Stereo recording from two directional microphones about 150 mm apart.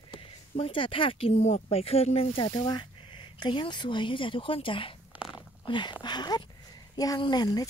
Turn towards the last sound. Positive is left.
turn(degrees=25)  # may be behind; listen again after turning